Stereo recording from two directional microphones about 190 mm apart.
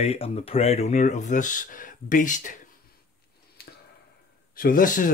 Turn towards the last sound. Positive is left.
turn(degrees=45)  # may be behind; listen again after turning